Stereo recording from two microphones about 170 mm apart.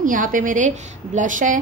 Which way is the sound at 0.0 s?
50° right (ahead or behind).